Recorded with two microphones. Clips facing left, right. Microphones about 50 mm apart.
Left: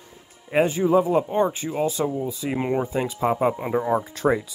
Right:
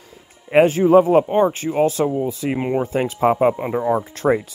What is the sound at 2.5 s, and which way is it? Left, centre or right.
Speech, centre.